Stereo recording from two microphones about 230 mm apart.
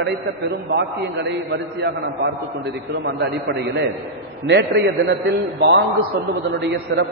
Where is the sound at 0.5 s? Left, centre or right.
Right.